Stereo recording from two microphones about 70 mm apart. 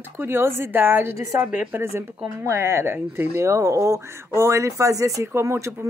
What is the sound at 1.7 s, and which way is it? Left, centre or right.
Speech, right.